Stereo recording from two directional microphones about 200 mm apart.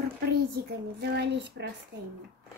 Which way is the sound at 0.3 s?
55° right (ahead or behind).